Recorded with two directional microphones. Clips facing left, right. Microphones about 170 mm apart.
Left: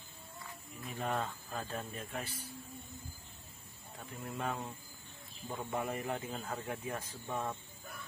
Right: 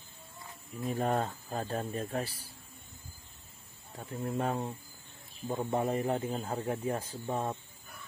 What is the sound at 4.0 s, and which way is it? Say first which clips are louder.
A man's voice: right 7 dB; 35° right (ahead or behind).